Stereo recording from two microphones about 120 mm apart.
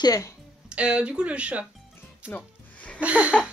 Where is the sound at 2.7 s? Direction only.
10° left (ahead or behind).